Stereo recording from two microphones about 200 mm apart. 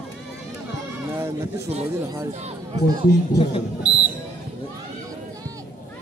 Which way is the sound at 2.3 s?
30° right (ahead or behind).